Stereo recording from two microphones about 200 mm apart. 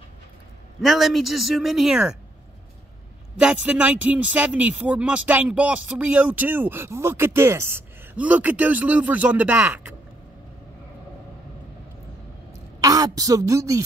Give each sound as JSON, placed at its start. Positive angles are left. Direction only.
{"t": 0.7, "sound": "speech", "side_deg": 0}
{"t": 3.6, "sound": "speech", "side_deg": -5}
{"t": 12.8, "sound": "a woman's voice", "side_deg": -15}